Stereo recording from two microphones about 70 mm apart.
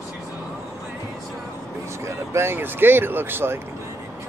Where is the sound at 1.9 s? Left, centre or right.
Right.